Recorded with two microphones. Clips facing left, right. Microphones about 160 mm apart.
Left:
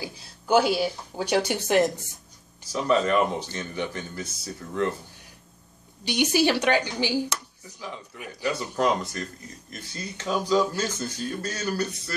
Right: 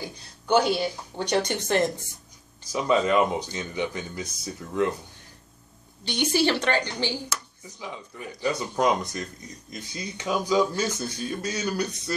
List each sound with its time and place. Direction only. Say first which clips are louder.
0.0 s speech: even; 5° left (ahead or behind)
2.7 s speech: even; 15° right (ahead or behind)
6.0 s speech: left 1 dB; 10° left (ahead or behind)
8.4 s speech: right 1 dB; 15° right (ahead or behind)